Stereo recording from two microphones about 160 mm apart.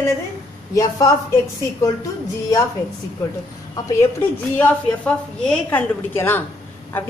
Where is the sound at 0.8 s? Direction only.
20° left (ahead or behind).